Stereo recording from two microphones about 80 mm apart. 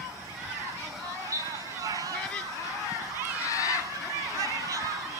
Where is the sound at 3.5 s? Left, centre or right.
Left.